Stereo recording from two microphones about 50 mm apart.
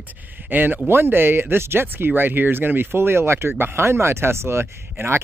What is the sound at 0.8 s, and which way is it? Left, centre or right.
Speech, right.